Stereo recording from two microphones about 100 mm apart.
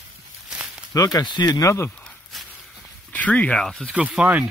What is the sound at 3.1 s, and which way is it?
Speech, 15° left (ahead or behind).